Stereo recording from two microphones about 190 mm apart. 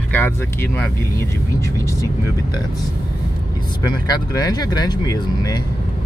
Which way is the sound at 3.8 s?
20° left (ahead or behind).